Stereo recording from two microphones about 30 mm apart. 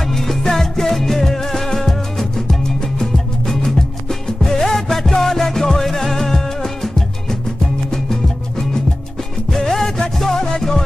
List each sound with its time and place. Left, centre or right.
0.1 s music: centre